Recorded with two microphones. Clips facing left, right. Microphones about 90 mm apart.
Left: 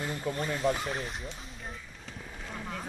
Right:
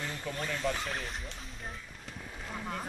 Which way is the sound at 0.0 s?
15° left (ahead or behind).